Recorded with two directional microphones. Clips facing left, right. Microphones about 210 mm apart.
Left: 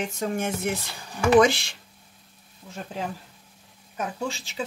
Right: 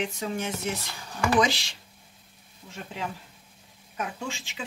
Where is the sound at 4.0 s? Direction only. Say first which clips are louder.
Left 4 dB; 40° left (ahead or behind).